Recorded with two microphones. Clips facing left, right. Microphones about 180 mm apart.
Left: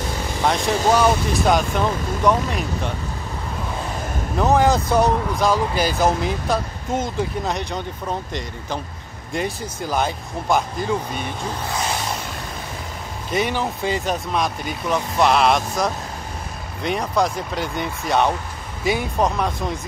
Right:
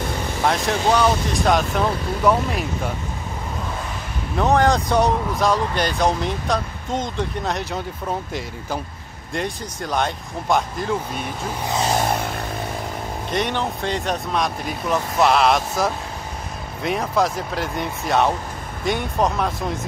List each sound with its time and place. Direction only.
0.4 s speech: centre (ahead or behind)
4.4 s speech: centre (ahead or behind)
12.0 s vehicle: 55° right (ahead or behind)
13.3 s speech: 5° left (ahead or behind)